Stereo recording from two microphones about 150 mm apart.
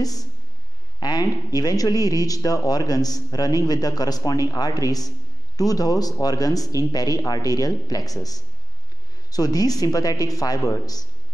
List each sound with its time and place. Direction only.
0.0 s speech: 25° left (ahead or behind)